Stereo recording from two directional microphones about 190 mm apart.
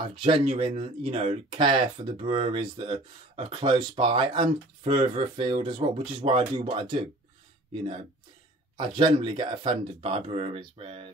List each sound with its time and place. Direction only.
0.0 s speech: 25° right (ahead or behind)